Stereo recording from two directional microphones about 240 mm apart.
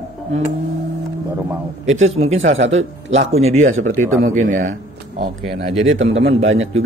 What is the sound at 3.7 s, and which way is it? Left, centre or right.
Speech, right.